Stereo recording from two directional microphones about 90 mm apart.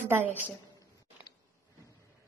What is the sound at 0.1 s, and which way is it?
Speech, 20° right (ahead or behind).